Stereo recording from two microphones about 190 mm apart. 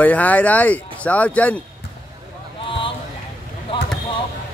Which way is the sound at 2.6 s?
25° left (ahead or behind).